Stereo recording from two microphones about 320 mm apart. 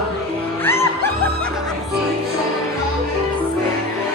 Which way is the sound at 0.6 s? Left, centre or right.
Centre.